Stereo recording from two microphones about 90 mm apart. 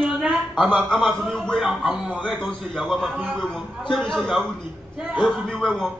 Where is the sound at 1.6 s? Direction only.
5° right (ahead or behind).